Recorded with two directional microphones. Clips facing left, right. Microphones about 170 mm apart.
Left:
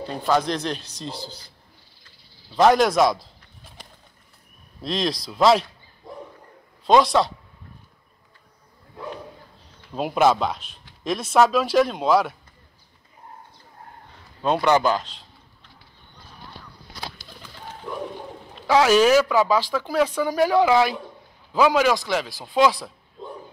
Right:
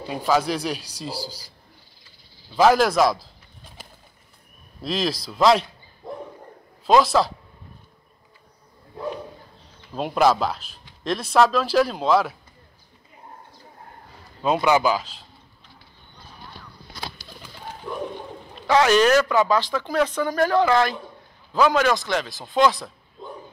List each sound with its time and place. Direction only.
0.0 s a man's voice: 10° right (ahead or behind)
2.5 s speech: centre (ahead or behind)
4.8 s speech: centre (ahead or behind)
6.0 s bow-wow: 60° right (ahead or behind)
6.9 s speech: centre (ahead or behind)
9.9 s speech: centre (ahead or behind)
14.4 s speech: 5° right (ahead or behind)
18.7 s speech: 5° left (ahead or behind)